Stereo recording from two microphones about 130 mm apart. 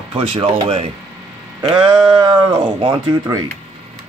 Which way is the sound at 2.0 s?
40° right (ahead or behind).